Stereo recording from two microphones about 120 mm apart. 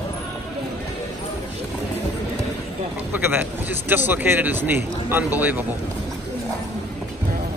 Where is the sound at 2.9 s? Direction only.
15° right (ahead or behind).